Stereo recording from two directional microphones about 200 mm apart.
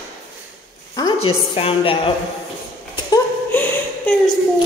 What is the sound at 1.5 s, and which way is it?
Speech, 25° left (ahead or behind).